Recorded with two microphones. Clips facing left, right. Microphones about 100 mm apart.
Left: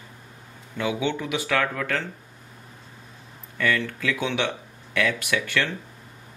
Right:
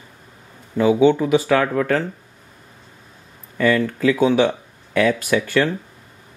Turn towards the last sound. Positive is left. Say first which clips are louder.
# right 7 dB
turn(degrees=-35)  # may be behind; listen again after turning